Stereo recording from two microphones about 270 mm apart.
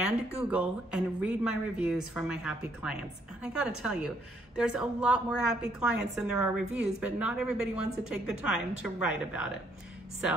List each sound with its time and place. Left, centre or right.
0.4 s a woman's voice: centre